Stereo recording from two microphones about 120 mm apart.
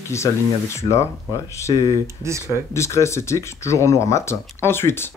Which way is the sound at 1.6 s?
30° left (ahead or behind).